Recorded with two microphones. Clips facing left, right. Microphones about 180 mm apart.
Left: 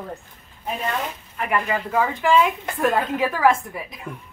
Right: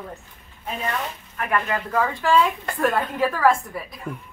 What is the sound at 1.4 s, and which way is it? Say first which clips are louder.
A woman's voice: left 1 dB; 10° left (ahead or behind).